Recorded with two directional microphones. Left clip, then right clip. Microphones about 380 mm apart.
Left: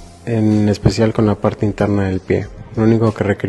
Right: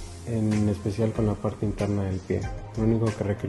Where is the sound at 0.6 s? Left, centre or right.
Left.